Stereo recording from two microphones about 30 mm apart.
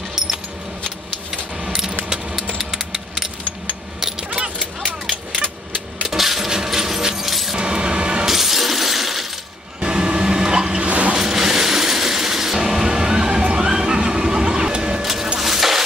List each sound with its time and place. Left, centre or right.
2.5 s typewriter: centre
6.0 s coin: centre
7.2 s keys jangling: centre
7.5 s a sound: right
8.3 s shatter: centre
9.8 s a sound: right
10.8 s vehicle: right
11.3 s music: centre
15.0 s vehicle: centre
15.4 s music: centre